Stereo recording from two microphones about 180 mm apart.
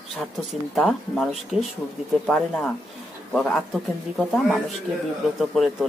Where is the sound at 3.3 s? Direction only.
Centre (ahead or behind).